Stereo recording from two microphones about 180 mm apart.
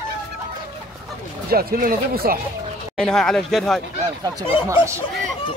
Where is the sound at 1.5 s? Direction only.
55° right (ahead or behind).